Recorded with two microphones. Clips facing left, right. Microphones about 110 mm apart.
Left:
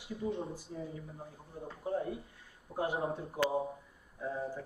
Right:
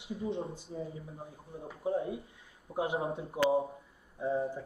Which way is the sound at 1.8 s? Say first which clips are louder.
Right 3 dB; 15° right (ahead or behind).